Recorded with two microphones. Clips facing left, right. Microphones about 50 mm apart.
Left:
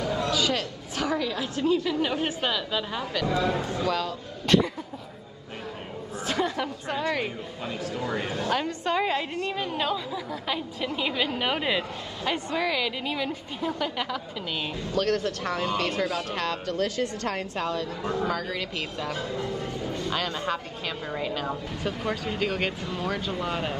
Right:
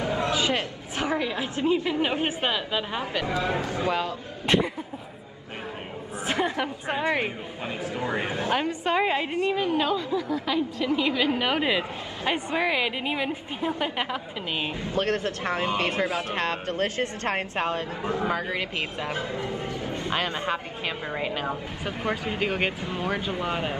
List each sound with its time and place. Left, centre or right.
0.0 s a woman's voice: right
6.2 s speech: right
9.6 s a woman's voice: centre
12.3 s speech: right
18.0 s speech: right